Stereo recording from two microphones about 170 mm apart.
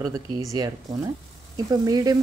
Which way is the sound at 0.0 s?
20° right (ahead or behind).